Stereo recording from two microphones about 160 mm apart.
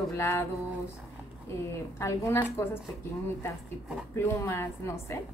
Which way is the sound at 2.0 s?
15° left (ahead or behind).